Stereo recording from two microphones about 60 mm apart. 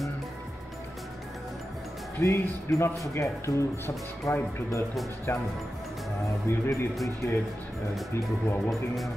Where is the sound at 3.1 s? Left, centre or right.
Left.